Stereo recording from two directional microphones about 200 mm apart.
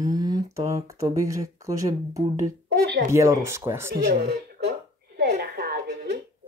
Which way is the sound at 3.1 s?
15° right (ahead or behind).